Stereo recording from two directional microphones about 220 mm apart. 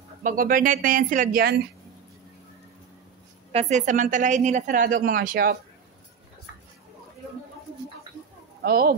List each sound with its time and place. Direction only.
0.2 s a woman's voice: 40° right (ahead or behind)
3.5 s a woman's voice: 35° right (ahead or behind)
8.6 s speech: 45° right (ahead or behind)